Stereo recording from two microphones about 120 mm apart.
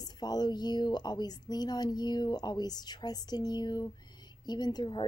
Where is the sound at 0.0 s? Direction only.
35° left (ahead or behind).